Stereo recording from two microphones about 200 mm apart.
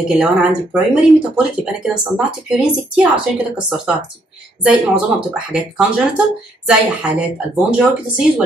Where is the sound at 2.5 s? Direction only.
5° right (ahead or behind).